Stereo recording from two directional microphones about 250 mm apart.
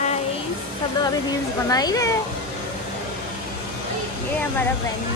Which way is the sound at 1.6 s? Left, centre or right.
Centre.